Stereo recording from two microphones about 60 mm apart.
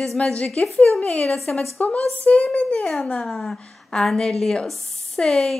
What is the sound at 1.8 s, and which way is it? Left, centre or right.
A woman's voice, left.